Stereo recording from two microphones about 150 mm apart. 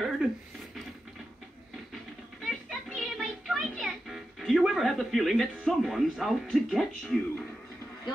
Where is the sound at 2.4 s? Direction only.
Centre (ahead or behind).